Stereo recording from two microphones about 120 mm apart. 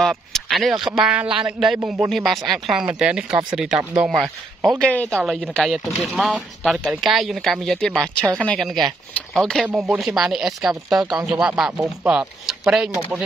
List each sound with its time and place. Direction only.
0.0 s a sound: centre (ahead or behind)
0.8 s speech: 5° right (ahead or behind)
4.8 s speech: 10° left (ahead or behind)
5.2 s speech: centre (ahead or behind)